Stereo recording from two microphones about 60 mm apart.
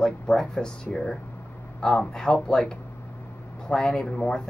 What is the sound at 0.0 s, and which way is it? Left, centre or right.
Speech, centre.